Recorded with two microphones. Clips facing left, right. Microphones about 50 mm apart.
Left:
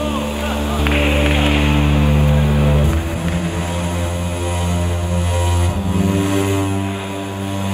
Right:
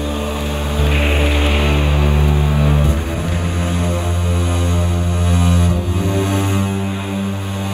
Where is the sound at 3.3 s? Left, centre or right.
Right.